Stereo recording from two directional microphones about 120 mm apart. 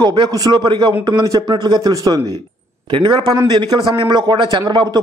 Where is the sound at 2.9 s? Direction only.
40° right (ahead or behind).